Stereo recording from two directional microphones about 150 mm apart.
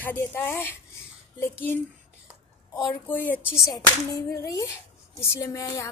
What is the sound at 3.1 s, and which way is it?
Speech, 10° left (ahead or behind).